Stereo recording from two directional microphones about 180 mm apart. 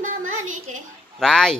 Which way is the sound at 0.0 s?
45° right (ahead or behind).